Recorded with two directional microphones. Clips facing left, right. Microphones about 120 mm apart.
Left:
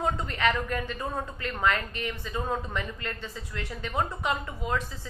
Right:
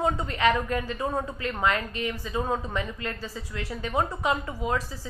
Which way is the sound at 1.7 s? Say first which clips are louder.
Left 1 dB; 25° right (ahead or behind).